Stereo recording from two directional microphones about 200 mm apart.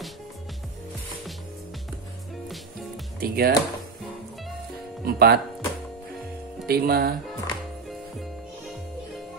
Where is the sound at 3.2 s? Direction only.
50° right (ahead or behind).